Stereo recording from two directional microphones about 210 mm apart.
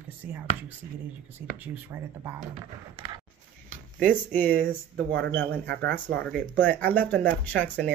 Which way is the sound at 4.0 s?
5° left (ahead or behind).